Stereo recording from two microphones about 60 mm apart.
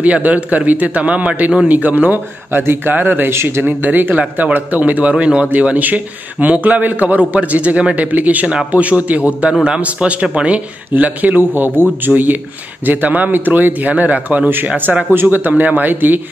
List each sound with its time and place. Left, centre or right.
0.0 s a man's voice: right
2.6 s a man's voice: right
3.3 s speech: right
3.6 s a man's voice: right